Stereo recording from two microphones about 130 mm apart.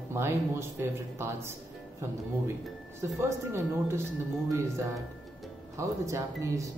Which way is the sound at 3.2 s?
20° right (ahead or behind).